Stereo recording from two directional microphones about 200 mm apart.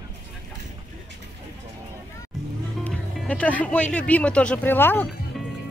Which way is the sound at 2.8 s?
5° left (ahead or behind).